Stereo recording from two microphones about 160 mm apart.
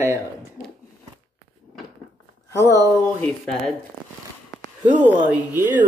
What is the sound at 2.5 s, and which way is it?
Speech, 20° left (ahead or behind).